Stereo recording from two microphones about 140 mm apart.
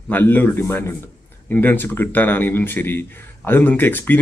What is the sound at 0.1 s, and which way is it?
Speech, 15° left (ahead or behind).